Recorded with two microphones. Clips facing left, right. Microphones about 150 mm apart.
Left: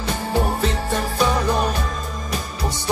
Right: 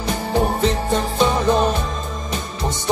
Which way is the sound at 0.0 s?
20° right (ahead or behind).